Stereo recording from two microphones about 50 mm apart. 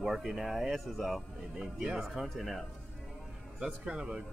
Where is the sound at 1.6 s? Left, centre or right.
Centre.